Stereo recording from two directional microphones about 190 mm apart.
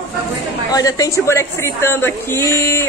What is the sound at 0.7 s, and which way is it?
A woman's voice, 20° left (ahead or behind).